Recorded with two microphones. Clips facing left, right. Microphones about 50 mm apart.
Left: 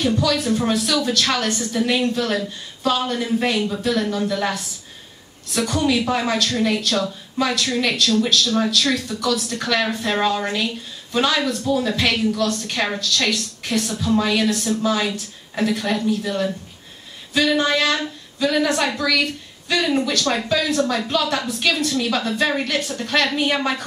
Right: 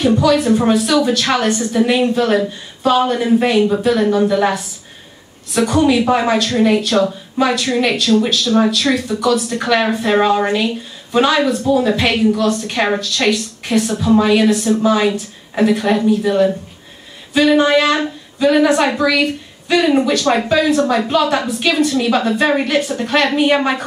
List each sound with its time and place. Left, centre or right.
0.0 s speech: right